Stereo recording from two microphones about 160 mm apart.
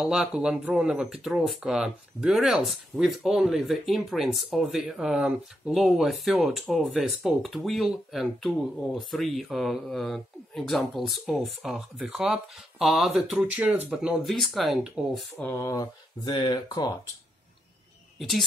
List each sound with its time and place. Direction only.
0.0 s speech: 5° right (ahead or behind)
15.3 s speech: 15° left (ahead or behind)